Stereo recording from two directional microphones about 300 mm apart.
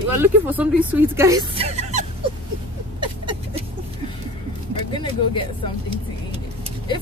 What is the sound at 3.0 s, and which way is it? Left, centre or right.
Rodents, centre.